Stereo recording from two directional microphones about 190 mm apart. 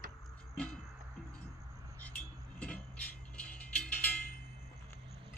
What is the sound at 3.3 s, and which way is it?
Music, 5° left (ahead or behind).